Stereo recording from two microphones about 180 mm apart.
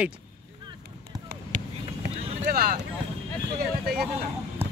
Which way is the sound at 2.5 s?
55° right (ahead or behind).